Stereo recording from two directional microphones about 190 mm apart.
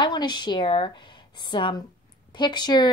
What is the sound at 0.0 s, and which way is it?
Speech, 25° left (ahead or behind).